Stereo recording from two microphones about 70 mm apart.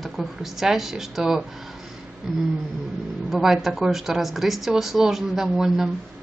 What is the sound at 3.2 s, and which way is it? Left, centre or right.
Speech, centre.